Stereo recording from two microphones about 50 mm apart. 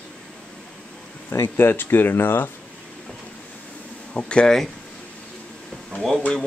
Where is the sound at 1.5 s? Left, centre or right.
Left.